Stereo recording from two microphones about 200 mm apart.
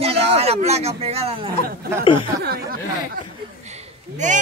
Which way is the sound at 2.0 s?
25° left (ahead or behind).